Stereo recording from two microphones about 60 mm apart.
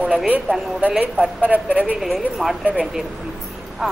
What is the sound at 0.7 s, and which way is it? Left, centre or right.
Speech, right.